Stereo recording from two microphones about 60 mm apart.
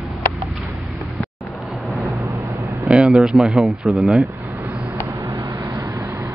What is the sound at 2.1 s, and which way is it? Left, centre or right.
Vehicle, right.